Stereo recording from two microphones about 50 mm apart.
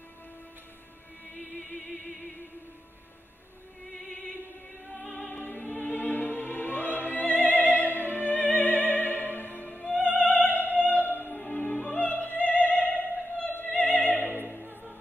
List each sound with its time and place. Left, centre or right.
4.8 s music: centre
5.6 s music: left
9.7 s music: centre
9.9 s opera: left
11.5 s music: left
14.0 s opera: left